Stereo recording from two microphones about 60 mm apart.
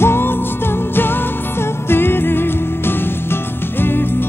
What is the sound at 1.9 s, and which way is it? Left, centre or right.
Music, left.